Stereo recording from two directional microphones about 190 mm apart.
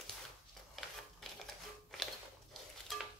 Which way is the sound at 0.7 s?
Centre (ahead or behind).